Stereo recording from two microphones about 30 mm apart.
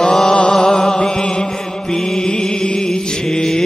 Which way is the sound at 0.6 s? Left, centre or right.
Left.